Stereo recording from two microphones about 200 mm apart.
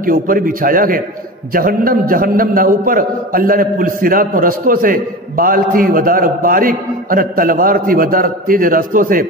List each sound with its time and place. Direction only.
0.0 s a man's voice: 45° right (ahead or behind)